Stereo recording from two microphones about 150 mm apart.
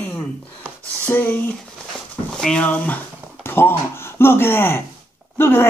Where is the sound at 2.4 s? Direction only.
10° left (ahead or behind).